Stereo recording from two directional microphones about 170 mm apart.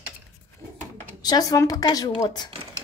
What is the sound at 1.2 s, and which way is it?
Speech, 25° left (ahead or behind).